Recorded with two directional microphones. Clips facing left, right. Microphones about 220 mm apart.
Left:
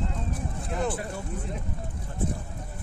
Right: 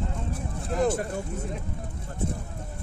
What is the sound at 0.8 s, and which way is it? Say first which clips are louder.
Speech: right 6 dB; 40° right (ahead or behind).